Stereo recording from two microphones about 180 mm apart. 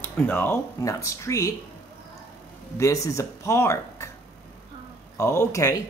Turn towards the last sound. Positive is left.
turn(degrees=15)  # may be behind; listen again after turning